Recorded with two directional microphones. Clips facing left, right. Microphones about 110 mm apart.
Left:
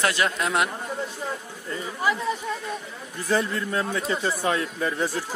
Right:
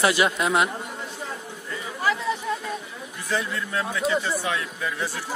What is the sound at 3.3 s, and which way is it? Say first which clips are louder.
Speech: left 3 dB; 35° left (ahead or behind).